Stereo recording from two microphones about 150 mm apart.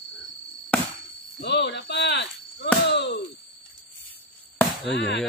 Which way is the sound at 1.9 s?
90° left.